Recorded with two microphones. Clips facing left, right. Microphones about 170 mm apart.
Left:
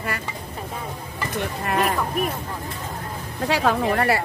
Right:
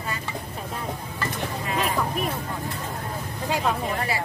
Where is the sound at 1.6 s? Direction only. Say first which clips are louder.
Left 5 dB; 60° left (ahead or behind).